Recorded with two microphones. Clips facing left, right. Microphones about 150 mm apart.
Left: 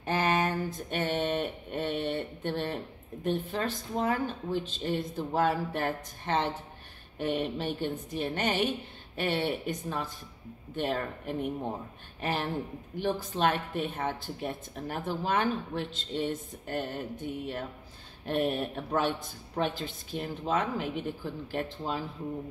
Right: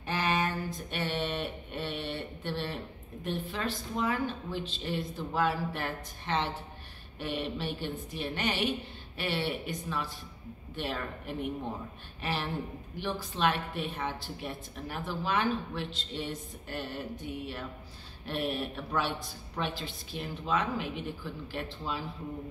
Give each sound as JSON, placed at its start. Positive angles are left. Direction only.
{"t": 0.0, "sound": "a woman's voice", "side_deg": 45}